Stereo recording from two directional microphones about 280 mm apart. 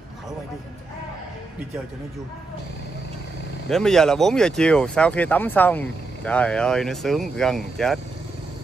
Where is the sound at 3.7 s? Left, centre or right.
Centre.